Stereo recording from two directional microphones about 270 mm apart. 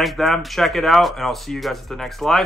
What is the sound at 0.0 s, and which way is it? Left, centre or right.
Speech, centre.